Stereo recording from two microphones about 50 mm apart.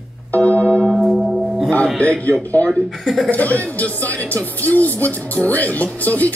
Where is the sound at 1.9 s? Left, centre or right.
Left.